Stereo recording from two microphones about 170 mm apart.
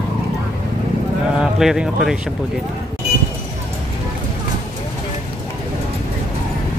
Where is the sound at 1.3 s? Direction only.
5° right (ahead or behind).